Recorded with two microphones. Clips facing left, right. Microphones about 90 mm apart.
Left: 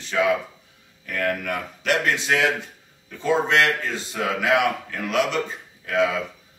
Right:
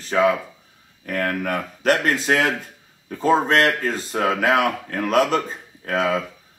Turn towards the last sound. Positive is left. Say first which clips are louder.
# right 1 dB
turn(degrees=-40)  # may be behind; listen again after turning